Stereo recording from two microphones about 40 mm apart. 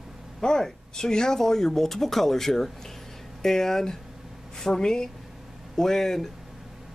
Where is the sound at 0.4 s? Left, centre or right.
Centre.